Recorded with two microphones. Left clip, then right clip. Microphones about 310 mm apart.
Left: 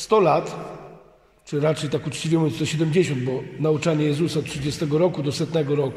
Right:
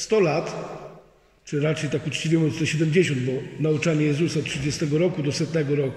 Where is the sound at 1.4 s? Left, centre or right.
Centre.